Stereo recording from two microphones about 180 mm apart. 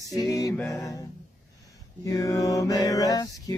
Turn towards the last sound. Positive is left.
turn(degrees=20)  # may be behind; listen again after turning